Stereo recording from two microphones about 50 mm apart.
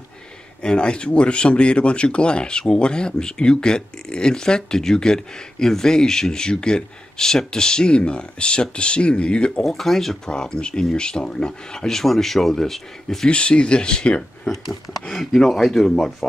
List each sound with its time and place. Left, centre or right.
0.6 s speech: centre
9.6 s speech: centre
13.3 s speech: left
14.5 s speech: centre